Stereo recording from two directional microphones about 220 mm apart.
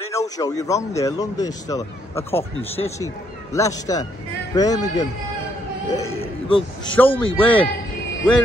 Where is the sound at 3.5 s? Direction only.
15° left (ahead or behind).